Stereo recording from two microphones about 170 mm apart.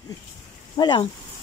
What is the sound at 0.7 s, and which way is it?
Speech, 25° left (ahead or behind).